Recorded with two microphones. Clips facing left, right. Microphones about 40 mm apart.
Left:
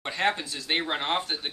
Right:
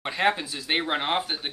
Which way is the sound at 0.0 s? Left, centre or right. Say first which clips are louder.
Right 3 dB; centre.